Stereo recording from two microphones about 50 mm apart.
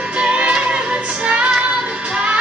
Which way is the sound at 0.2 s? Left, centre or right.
Right.